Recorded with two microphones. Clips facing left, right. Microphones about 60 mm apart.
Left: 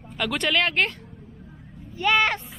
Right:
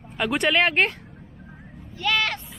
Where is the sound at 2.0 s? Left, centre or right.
Left.